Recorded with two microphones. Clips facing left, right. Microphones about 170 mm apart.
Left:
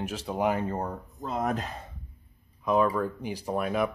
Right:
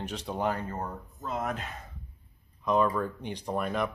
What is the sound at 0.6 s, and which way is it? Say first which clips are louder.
Speech: left 4 dB; 35° left (ahead or behind).